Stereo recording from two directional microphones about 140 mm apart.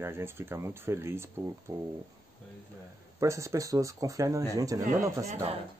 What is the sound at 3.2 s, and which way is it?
Speech, 20° right (ahead or behind).